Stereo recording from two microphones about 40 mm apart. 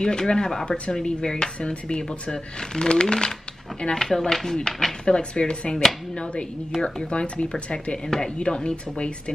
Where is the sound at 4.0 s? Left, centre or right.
Centre.